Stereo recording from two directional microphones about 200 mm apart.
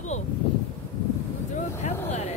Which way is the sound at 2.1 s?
35° left (ahead or behind).